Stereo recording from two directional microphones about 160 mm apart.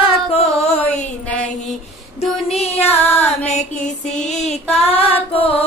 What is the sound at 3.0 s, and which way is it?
Female singing, 15° left (ahead or behind).